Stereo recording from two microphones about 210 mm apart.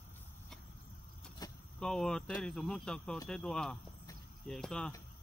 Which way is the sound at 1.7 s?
5° left (ahead or behind).